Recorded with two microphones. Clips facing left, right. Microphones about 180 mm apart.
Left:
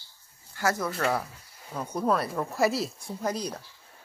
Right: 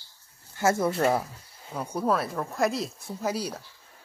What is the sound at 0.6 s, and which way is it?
Speech, 25° right (ahead or behind).